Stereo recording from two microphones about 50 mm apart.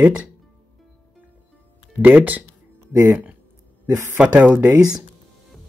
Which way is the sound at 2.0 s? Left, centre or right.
Right.